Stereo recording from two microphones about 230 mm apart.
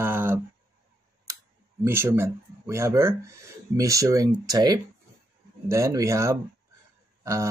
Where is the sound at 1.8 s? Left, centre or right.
Centre.